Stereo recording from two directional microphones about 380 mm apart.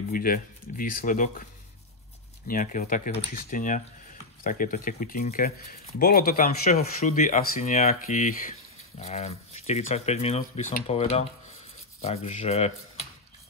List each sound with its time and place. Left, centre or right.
0.1 s speech: left
2.4 s speech: left